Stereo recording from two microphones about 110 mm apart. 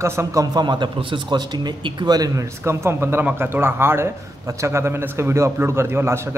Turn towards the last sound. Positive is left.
turn(degrees=-25)  # may be behind; listen again after turning